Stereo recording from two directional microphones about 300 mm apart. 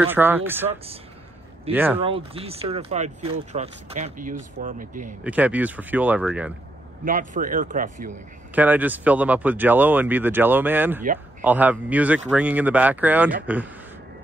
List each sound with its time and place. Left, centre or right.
0.0 s speech: centre
1.7 s speech: centre
2.0 s speech: centre
5.2 s speech: centre
7.1 s speech: right
8.5 s speech: centre